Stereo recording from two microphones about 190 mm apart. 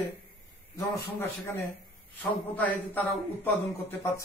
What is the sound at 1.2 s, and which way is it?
A man's voice, 10° left (ahead or behind).